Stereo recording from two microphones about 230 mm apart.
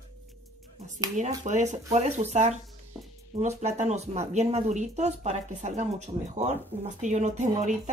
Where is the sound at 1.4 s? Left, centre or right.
Right.